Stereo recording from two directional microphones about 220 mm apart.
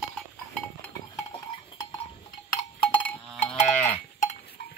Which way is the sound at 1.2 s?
15° left (ahead or behind).